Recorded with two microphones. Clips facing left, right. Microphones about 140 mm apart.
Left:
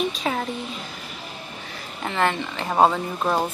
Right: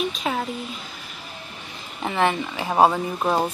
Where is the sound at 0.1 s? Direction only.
Centre (ahead or behind).